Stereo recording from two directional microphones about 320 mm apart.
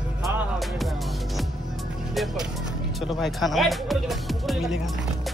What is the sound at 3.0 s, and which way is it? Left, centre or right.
Speech, centre.